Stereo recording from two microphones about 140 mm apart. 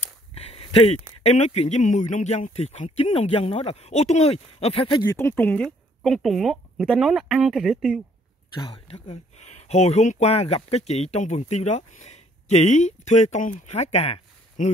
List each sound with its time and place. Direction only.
0.3 s a sound: 45° left (ahead or behind)
1.2 s speech: 50° left (ahead or behind)
5.0 s speech: 20° left (ahead or behind)
6.0 s speech: centre (ahead or behind)
8.5 s speech: 35° left (ahead or behind)
9.1 s speech: 50° left (ahead or behind)